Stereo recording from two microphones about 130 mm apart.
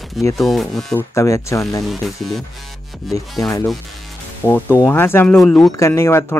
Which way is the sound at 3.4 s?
25° left (ahead or behind).